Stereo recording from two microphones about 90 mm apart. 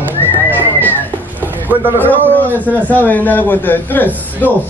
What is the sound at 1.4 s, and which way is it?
Speech, 20° right (ahead or behind).